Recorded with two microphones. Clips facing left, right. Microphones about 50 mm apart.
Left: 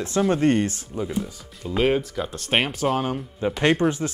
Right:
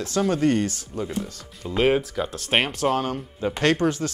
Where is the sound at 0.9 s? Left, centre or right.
Centre.